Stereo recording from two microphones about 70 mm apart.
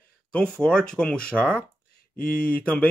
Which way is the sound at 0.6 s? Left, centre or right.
Centre.